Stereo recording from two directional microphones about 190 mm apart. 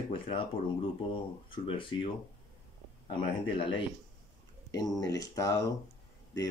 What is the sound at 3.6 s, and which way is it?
Speech, 25° left (ahead or behind).